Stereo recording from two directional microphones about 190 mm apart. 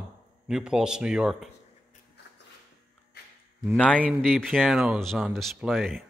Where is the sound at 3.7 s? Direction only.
5° left (ahead or behind).